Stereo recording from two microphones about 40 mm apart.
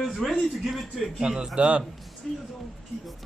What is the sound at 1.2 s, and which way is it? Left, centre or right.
Speech, centre.